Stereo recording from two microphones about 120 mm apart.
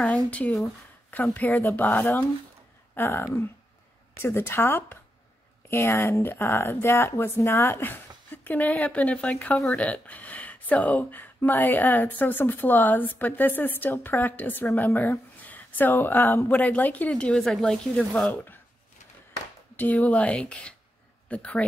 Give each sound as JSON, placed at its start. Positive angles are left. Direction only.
{"t": 0.0, "sound": "speech", "side_deg": 10}
{"t": 20.0, "sound": "speech", "side_deg": 5}